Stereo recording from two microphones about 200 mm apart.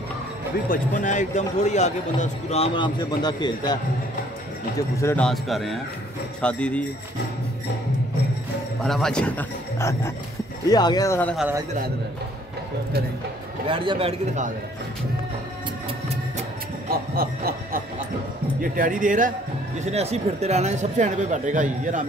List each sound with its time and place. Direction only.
0.7 s a man's voice: 40° left (ahead or behind); by 3.8 s 20° left (ahead or behind)
4.7 s a man's voice: 10° left (ahead or behind)
8.8 s a man's voice: centre (ahead or behind)
11.3 s a man's voice: 10° right (ahead or behind)
13.7 s speech: 25° right (ahead or behind)
16.9 s snicker: 50° right (ahead or behind)
18.6 s a man's voice: 45° right (ahead or behind)